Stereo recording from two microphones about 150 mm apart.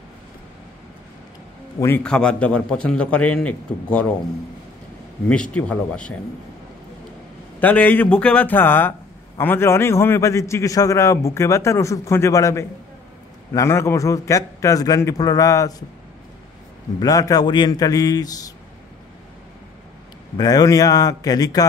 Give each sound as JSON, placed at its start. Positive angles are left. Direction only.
{"t": 2.0, "sound": "a man's voice", "side_deg": 5}
{"t": 5.3, "sound": "a man's voice", "side_deg": 5}
{"t": 7.6, "sound": "a man's voice", "side_deg": 10}
{"t": 17.0, "sound": "a man's voice", "side_deg": 25}
{"t": 20.3, "sound": "a man's voice", "side_deg": 25}